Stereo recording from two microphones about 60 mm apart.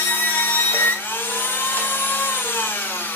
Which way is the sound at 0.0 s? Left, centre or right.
Left.